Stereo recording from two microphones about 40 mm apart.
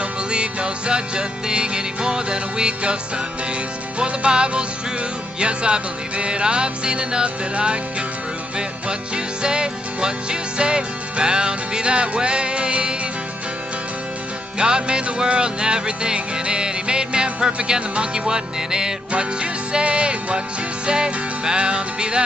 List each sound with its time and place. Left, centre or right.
0.3 s music: right
4.0 s music: right
14.6 s music: right
19.4 s music: right